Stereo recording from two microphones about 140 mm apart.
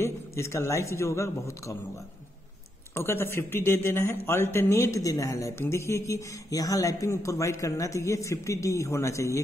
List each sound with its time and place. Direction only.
0.0 s a man's voice: 20° left (ahead or behind)
2.9 s a man's voice: 15° left (ahead or behind)